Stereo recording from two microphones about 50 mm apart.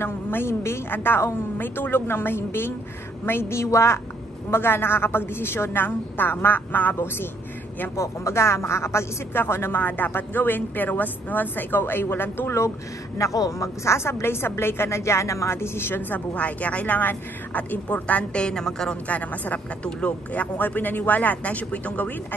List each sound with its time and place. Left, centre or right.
0.0 s a woman's voice: left
4.5 s a woman's voice: left
7.9 s speech: left
9.3 s a woman's voice: left
9.8 s speech: left
13.2 s speech: left
15.5 s a woman's voice: left
16.3 s speech: left; by 18.9 s centre
19.0 s speech: left